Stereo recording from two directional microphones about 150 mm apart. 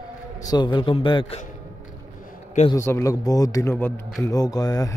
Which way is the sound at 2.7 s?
20° left (ahead or behind).